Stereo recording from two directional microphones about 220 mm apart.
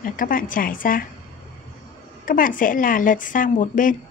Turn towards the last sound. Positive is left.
turn(degrees=35)  # may be behind; listen again after turning